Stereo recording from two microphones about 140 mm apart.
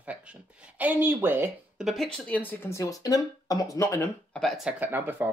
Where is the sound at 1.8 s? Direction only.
Centre (ahead or behind).